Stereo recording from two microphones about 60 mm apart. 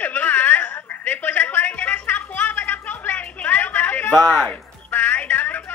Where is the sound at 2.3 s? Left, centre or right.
Left.